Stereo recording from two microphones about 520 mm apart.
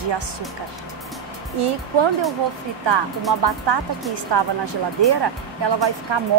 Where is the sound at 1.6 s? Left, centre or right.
Right.